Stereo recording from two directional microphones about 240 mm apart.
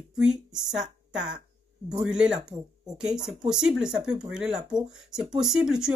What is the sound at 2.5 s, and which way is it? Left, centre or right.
Speech, centre.